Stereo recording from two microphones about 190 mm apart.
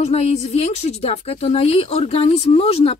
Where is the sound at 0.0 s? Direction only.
35° left (ahead or behind).